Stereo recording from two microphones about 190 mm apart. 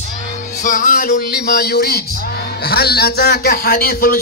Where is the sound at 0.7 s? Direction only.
45° left (ahead or behind).